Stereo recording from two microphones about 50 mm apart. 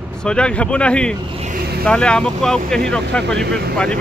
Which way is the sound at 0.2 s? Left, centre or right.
Left.